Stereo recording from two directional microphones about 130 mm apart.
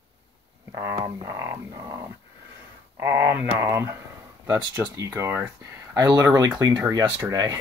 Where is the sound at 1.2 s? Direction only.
25° right (ahead or behind).